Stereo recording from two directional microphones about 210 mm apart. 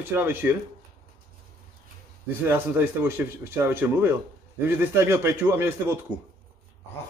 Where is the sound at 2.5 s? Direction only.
10° right (ahead or behind).